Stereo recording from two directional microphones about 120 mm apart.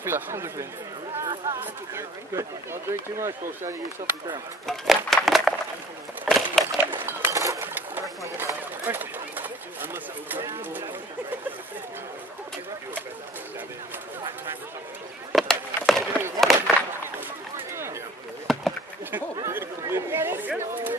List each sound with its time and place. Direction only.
0.0 s speech: 20° right (ahead or behind)
1.2 s a sound: 35° right (ahead or behind)
1.6 s speech: 20° right (ahead or behind)
4.6 s a sound: centre (ahead or behind)
6.8 s bird: 15° right (ahead or behind)
8.2 s speech: 25° right (ahead or behind)
15.3 s skateboard: centre (ahead or behind)
16.3 s a sound: centre (ahead or behind)
18.5 s chop: centre (ahead or behind)
19.4 s speech: 20° right (ahead or behind)